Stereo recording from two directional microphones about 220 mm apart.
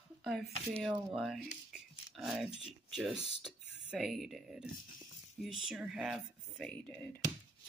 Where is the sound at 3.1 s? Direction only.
25° left (ahead or behind).